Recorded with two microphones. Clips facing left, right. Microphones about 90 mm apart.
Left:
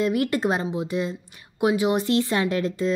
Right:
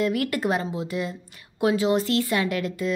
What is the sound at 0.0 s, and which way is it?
Speech, 25° left (ahead or behind).